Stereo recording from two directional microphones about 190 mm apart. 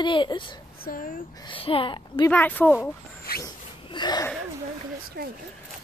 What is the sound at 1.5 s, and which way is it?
Speech, 30° left (ahead or behind).